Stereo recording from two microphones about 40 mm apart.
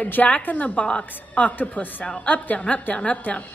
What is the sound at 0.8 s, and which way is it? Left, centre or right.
Speech, left.